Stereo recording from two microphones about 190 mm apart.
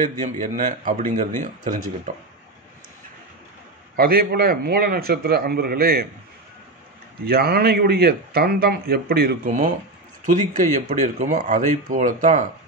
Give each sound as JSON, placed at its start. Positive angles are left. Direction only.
{"t": 0.2, "sound": "speech", "side_deg": -40}
{"t": 3.9, "sound": "speech", "side_deg": -50}
{"t": 7.2, "sound": "speech", "side_deg": -55}